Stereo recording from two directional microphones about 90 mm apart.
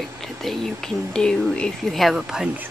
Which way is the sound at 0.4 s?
5° left (ahead or behind).